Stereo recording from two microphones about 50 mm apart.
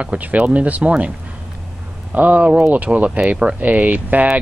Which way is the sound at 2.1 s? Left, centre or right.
Right.